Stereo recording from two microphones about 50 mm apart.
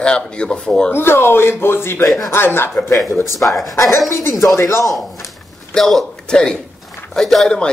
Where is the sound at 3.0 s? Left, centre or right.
Left.